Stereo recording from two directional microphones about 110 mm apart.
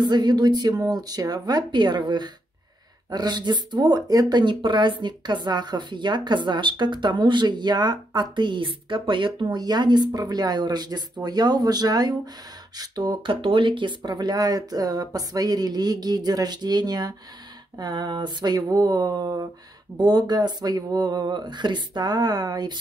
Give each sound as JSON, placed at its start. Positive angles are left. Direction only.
{"t": 0.0, "sound": "speech", "side_deg": -40}